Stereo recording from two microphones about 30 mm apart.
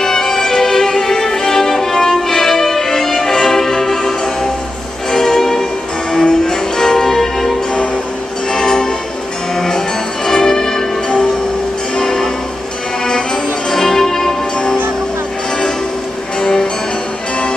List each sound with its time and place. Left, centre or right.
0.0 s music: centre
8.5 s music: left
12.0 s music: left
16.3 s music: left